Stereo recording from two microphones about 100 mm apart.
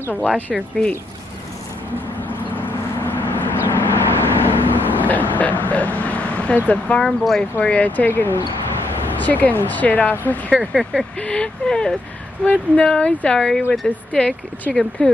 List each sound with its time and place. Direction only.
2.2 s vehicle: 15° left (ahead or behind)
6.7 s speech: 10° left (ahead or behind)
7.5 s speech: 15° left (ahead or behind)
10.6 s speech: centre (ahead or behind)
11.1 s speech: 10° left (ahead or behind)